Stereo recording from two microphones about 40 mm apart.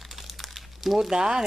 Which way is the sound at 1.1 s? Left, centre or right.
Right.